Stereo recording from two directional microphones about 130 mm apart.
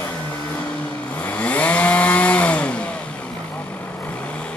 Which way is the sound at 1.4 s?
10° left (ahead or behind).